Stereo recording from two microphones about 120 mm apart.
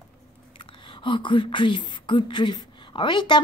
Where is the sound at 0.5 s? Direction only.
45° left (ahead or behind).